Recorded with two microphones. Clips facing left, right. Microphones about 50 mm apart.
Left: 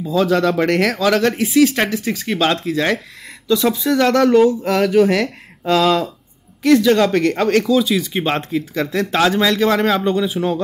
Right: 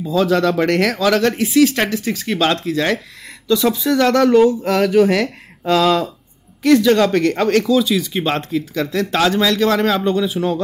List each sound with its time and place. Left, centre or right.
0.0 s speech: centre
8.1 s a man's voice: centre